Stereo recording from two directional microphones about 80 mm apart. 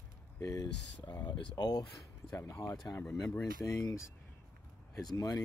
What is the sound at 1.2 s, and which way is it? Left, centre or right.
Speech, left.